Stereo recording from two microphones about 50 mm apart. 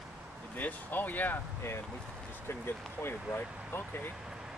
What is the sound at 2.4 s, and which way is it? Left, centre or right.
Speech, left.